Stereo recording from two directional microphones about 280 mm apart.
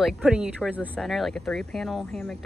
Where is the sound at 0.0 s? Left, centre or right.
Centre.